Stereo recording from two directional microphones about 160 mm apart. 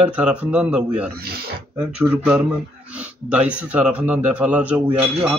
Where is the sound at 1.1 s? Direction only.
75° right (ahead or behind).